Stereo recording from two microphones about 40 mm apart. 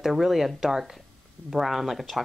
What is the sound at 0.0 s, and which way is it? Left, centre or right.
Speech, centre.